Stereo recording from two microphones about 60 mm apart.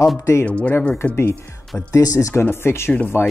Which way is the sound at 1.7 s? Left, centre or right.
Left.